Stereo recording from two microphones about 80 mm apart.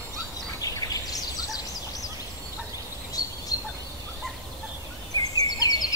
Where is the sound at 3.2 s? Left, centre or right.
Left.